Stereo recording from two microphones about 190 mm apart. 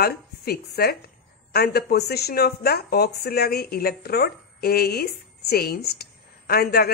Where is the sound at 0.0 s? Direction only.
55° left (ahead or behind).